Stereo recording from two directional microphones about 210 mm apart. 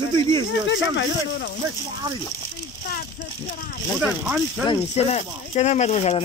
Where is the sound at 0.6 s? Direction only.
60° left (ahead or behind).